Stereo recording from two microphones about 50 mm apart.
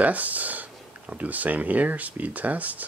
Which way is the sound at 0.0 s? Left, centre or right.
Right.